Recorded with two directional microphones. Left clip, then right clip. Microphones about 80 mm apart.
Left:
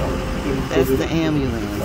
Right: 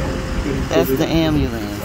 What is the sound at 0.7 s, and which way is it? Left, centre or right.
Speech, right.